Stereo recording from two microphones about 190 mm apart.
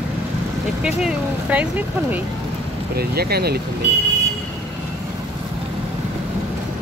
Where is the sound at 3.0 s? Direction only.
55° right (ahead or behind).